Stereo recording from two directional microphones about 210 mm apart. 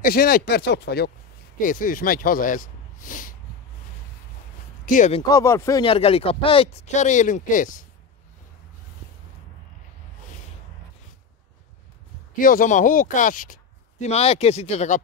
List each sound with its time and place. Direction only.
0.0 s speech: 45° left (ahead or behind)
4.8 s speech: 35° left (ahead or behind)
5.2 s speech: 15° left (ahead or behind); by 7.8 s 40° left (ahead or behind)
12.4 s speech: 40° left (ahead or behind)